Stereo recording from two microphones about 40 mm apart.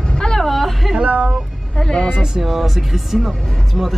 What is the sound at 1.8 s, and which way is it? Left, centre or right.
Vehicle, centre.